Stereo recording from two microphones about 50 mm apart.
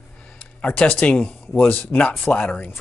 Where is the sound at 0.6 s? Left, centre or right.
Left.